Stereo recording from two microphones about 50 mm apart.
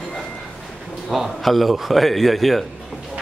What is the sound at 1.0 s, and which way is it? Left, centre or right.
A man's voice, centre.